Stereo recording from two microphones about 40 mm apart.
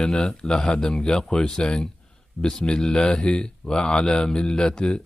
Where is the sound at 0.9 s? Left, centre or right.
Centre.